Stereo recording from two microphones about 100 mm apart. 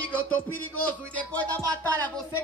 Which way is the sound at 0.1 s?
15° left (ahead or behind).